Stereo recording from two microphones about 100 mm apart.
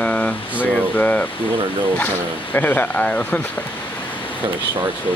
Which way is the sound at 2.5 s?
20° left (ahead or behind).